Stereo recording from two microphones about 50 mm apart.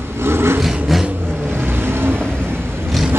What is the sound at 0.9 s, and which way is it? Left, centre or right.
Vehicle, centre.